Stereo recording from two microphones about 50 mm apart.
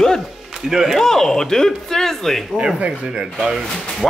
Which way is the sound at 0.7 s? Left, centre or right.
Centre.